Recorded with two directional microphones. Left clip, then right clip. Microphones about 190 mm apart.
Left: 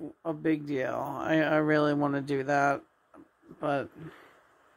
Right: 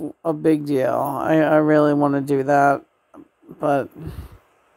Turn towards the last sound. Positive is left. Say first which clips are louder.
# right 10 dB
turn(degrees=-40)  # may be behind; listen again after turning